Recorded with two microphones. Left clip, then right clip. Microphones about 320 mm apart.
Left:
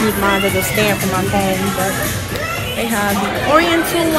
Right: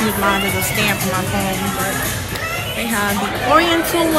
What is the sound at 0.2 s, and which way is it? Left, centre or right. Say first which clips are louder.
Speech: left 1 dB; centre.